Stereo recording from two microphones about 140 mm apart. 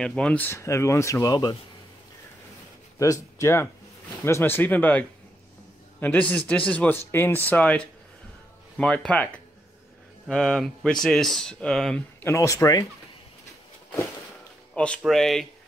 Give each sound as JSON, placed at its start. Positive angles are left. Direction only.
{"t": 0.0, "sound": "speech", "side_deg": 5}
{"t": 3.0, "sound": "a man's voice", "side_deg": 20}
{"t": 12.2, "sound": "speech", "side_deg": 20}
{"t": 15.0, "sound": "speech", "side_deg": 0}